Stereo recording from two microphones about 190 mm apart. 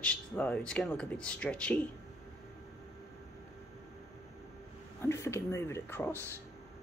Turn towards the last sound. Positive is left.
turn(degrees=10)  # may be behind; listen again after turning